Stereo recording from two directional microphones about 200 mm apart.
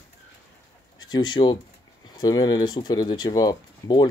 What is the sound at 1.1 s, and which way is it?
Speech, 20° left (ahead or behind).